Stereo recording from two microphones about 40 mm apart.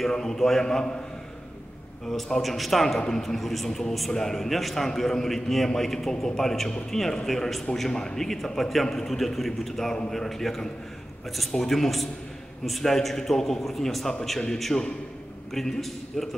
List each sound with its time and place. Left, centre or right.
0.1 s a man's voice: centre
2.0 s a man's voice: centre
7.9 s a man's voice: centre
14.7 s a man's voice: left
15.5 s a man's voice: centre